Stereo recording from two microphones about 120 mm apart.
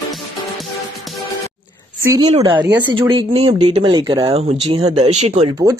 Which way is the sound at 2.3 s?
50° right (ahead or behind).